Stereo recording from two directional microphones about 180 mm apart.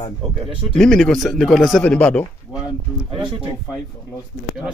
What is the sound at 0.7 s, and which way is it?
Speech, 5° left (ahead or behind).